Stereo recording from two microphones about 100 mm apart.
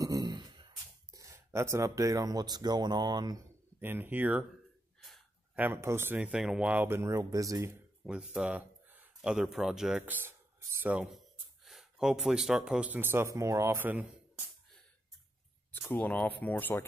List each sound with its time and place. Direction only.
0.0 s a sound: 40° right (ahead or behind)
1.1 s speech: 30° right (ahead or behind)
3.8 s speech: 20° right (ahead or behind)
5.6 s speech: 25° right (ahead or behind)
6.9 s speech: 30° right (ahead or behind)
8.0 s speech: 5° right (ahead or behind)
10.0 s speech: 20° right (ahead or behind)
11.0 s speech: centre (ahead or behind); by 13.8 s 30° right (ahead or behind)
15.9 s speech: 15° left (ahead or behind)